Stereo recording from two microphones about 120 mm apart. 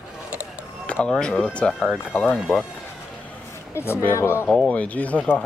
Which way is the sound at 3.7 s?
20° left (ahead or behind).